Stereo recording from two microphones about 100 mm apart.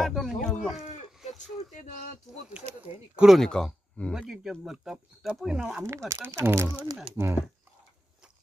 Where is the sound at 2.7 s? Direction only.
90° right.